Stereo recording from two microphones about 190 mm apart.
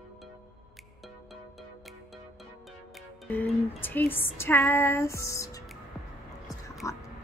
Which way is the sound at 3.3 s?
10° left (ahead or behind).